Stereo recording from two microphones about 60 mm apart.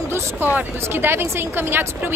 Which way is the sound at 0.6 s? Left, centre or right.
Right.